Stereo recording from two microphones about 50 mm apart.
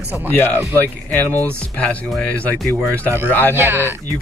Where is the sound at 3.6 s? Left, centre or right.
Right.